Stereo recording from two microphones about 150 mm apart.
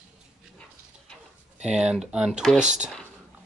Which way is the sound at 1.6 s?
5° right (ahead or behind).